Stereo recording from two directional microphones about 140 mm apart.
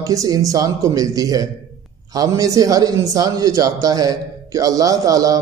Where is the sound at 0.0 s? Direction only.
25° right (ahead or behind).